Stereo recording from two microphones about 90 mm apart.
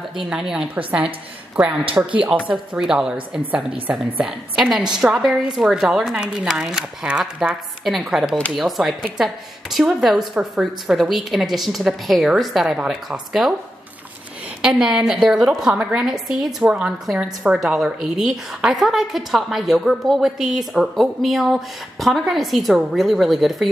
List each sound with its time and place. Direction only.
0.3 s speech: 5° right (ahead or behind)
2.0 s speech: 20° right (ahead or behind)
2.3 s a woman's voice: 10° right (ahead or behind)
14.6 s a woman's voice: 10° right (ahead or behind)